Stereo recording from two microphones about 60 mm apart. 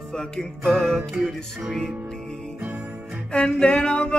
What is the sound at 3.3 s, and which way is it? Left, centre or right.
Music, centre.